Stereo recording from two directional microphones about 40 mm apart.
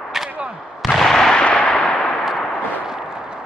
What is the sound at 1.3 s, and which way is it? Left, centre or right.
Gunshot, left.